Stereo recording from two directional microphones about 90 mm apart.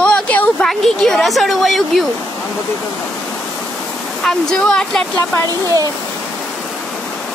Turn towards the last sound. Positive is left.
turn(degrees=-40)  # may be behind; listen again after turning